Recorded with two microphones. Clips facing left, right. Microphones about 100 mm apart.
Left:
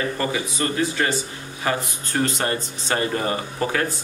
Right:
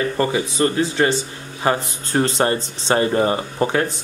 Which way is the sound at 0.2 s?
30° right (ahead or behind).